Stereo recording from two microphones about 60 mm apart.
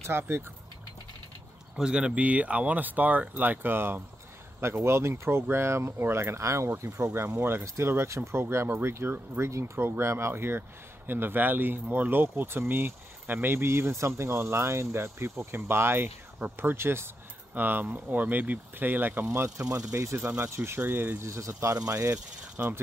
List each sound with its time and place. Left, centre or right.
0.2 s speech: right
1.8 s speech: centre; by 7.1 s right
7.2 s speech: right
7.6 s speech: right
19.3 s speech: right
20.8 s speech: right
21.2 s speech: right
22.6 s speech: right